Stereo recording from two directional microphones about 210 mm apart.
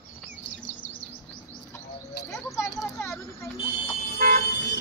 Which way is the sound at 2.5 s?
15° left (ahead or behind).